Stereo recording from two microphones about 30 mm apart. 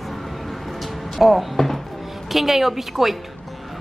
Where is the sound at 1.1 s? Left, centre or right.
Centre.